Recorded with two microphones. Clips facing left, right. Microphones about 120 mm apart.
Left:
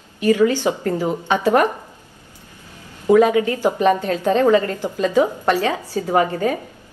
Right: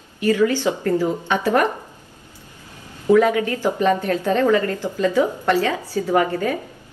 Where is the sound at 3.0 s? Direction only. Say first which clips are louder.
Left 2 dB; 20° left (ahead or behind).